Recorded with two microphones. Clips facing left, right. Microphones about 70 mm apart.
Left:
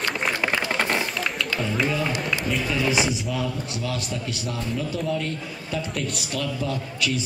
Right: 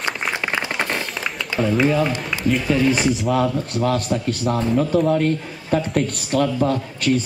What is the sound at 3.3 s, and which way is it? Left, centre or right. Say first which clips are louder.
A man's voice: right 8 dB; right.